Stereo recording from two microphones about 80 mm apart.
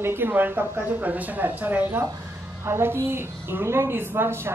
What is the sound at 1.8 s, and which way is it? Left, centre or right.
Speech, right.